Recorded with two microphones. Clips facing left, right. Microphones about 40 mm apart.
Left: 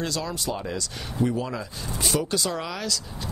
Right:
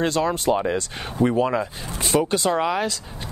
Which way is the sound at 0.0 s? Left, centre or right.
Right.